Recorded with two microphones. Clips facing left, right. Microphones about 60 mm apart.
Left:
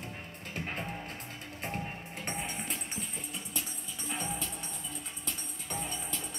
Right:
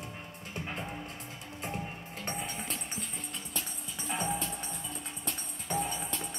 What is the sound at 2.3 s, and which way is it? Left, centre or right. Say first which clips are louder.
Music: even; centre.